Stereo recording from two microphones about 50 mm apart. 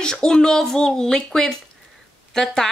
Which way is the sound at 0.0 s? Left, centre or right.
Centre.